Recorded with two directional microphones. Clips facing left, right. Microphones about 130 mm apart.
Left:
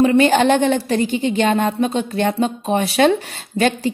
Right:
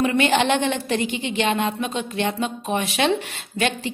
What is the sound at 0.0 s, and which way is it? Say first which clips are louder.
A woman's voice: left 6 dB; 35° left (ahead or behind).